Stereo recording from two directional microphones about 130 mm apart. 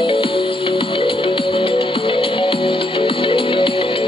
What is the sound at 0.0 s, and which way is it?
Music, 45° left (ahead or behind).